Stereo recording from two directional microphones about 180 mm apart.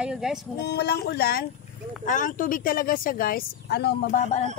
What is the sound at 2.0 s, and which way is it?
Speech, 45° left (ahead or behind).